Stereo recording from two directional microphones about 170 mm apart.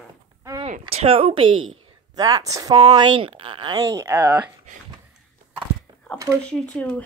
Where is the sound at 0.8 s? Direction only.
35° right (ahead or behind); by 4.5 s 10° right (ahead or behind).